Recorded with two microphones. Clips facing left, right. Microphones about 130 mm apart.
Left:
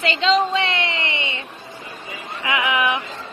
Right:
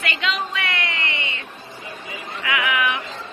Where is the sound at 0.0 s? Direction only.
30° left (ahead or behind).